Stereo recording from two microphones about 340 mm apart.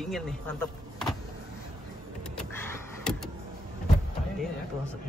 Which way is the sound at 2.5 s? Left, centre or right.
Centre.